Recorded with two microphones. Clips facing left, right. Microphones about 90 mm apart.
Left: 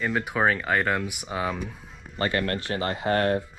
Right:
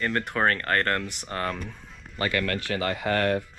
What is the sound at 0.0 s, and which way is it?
Speech, 5° left (ahead or behind).